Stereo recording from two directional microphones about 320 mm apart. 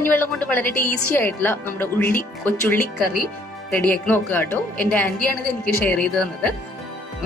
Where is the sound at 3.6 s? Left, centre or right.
Centre.